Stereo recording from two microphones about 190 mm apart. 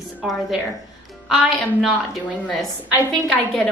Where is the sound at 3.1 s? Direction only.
Centre (ahead or behind).